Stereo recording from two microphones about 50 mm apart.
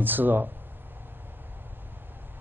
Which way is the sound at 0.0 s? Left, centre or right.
Right.